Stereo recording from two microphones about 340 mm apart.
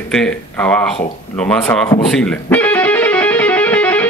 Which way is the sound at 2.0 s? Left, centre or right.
Centre.